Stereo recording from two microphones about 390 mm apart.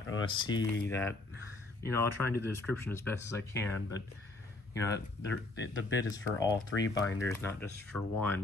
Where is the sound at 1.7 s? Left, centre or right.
Centre.